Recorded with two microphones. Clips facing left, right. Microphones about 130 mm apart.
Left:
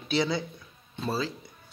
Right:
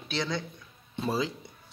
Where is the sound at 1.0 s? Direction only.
15° right (ahead or behind).